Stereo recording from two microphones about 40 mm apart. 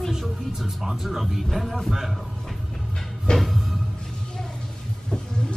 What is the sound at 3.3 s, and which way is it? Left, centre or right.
Music, left.